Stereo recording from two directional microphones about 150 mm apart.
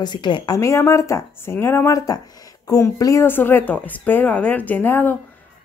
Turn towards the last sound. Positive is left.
turn(degrees=15)  # may be behind; listen again after turning